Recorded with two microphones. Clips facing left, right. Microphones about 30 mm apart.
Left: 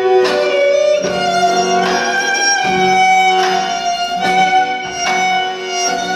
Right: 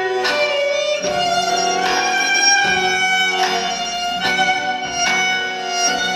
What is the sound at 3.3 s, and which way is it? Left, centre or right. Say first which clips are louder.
Music: left 5 dB; centre.